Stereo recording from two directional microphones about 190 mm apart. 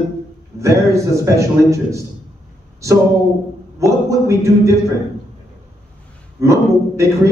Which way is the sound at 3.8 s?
15° right (ahead or behind).